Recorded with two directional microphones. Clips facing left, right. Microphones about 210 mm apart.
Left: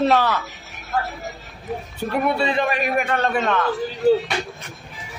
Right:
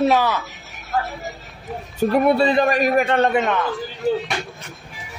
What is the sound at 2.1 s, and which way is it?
A man's voice, 35° right (ahead or behind).